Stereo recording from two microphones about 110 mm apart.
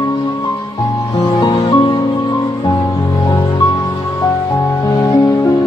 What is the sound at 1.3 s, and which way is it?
Music, 40° left (ahead or behind).